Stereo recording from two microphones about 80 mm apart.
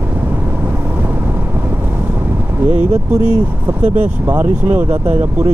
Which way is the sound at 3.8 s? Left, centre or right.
Right.